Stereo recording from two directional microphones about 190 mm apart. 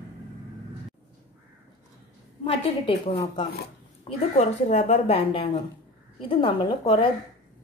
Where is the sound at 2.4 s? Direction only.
30° left (ahead or behind).